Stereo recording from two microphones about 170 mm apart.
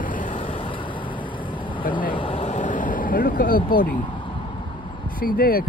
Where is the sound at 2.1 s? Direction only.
30° left (ahead or behind); by 3.9 s 55° left (ahead or behind).